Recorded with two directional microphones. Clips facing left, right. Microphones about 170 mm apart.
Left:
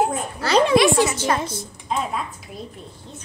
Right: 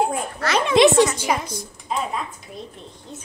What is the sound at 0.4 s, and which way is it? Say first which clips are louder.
Speech: left 5 dB; 30° left (ahead or behind).